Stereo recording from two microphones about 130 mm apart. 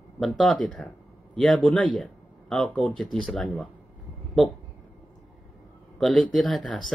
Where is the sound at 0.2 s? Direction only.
Centre (ahead or behind).